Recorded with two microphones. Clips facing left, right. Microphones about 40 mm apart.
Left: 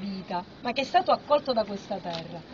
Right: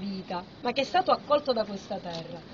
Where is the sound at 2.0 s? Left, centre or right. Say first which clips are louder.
Left 2 dB; left.